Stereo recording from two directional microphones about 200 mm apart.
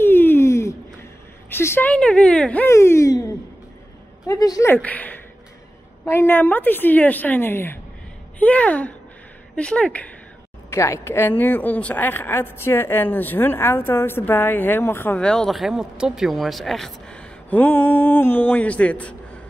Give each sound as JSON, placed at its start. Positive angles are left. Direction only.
{"t": 0.0, "sound": "a sound", "side_deg": 10}
{"t": 1.5, "sound": "speech", "side_deg": 10}
{"t": 4.3, "sound": "a woman's voice", "side_deg": 15}